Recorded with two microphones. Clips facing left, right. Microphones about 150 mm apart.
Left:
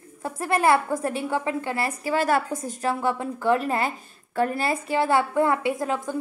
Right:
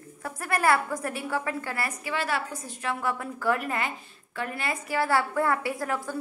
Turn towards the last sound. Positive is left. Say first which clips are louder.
# left 4 dB
turn(degrees=20)  # may be behind; listen again after turning